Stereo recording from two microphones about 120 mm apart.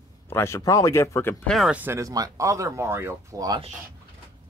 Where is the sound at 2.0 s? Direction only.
30° right (ahead or behind).